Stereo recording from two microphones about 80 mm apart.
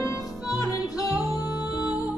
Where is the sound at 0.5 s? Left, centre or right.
Left.